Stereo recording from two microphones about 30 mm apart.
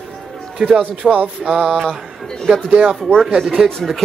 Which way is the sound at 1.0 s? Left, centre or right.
Right.